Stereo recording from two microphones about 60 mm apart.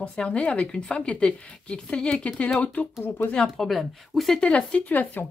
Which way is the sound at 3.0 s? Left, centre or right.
Left.